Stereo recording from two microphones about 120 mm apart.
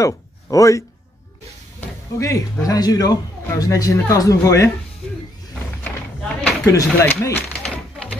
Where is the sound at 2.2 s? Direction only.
25° left (ahead or behind).